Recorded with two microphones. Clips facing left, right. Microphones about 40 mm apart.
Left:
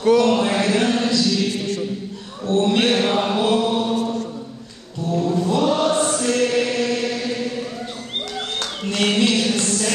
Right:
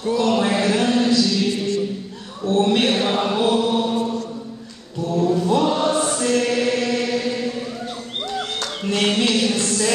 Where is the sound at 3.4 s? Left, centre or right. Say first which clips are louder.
Right 1 dB; centre.